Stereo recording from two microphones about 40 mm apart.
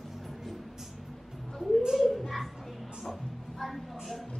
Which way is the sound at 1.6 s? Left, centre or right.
Centre.